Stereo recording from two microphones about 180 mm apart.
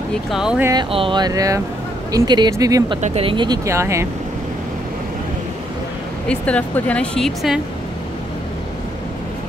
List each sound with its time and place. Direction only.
0.1 s speech: centre (ahead or behind)
0.9 s speech: 25° right (ahead or behind)
3.0 s speech: 30° right (ahead or behind)
3.6 s speech: 15° right (ahead or behind)
6.2 s speech: 5° left (ahead or behind)